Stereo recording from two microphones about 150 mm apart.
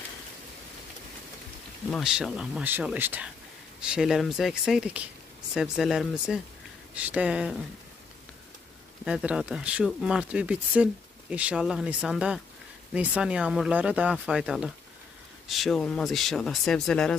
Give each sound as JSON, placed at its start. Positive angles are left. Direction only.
{"t": 1.9, "sound": "speech", "side_deg": 0}
{"t": 9.0, "sound": "speech", "side_deg": -5}